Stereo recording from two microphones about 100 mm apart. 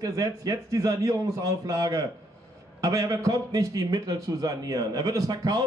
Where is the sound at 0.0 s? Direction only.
35° right (ahead or behind).